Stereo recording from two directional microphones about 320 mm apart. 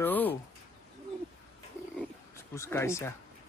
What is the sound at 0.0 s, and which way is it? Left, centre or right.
Bird, centre.